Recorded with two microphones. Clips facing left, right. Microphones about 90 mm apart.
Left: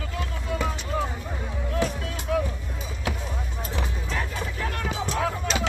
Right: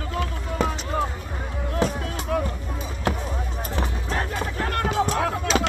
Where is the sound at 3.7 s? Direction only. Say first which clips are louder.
Right 3 dB; 50° right (ahead or behind).